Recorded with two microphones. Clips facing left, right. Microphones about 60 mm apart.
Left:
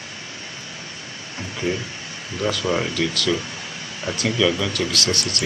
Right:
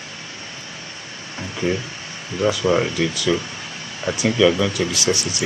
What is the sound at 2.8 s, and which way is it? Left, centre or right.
Speech, centre.